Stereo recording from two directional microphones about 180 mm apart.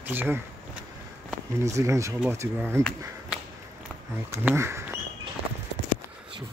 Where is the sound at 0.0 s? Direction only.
10° right (ahead or behind).